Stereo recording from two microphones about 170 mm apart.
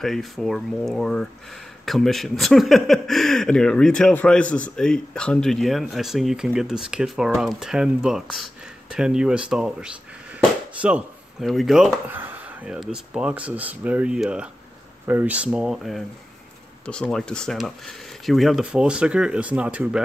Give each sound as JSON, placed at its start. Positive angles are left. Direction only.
{"t": 0.0, "sound": "speech", "side_deg": 0}